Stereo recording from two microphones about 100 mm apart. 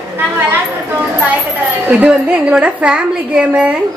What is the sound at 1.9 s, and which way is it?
A woman's voice, 10° right (ahead or behind).